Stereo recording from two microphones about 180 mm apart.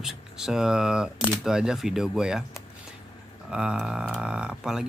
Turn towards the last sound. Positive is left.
turn(degrees=-5)  # may be behind; listen again after turning